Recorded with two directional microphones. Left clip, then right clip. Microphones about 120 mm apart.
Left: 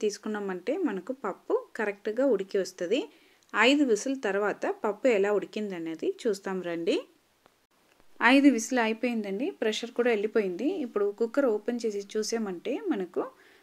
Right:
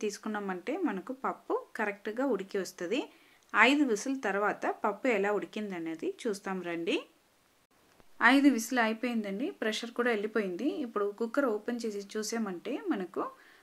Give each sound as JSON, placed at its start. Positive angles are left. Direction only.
{"t": 0.0, "sound": "a woman's voice", "side_deg": 25}
{"t": 8.2, "sound": "a woman's voice", "side_deg": 25}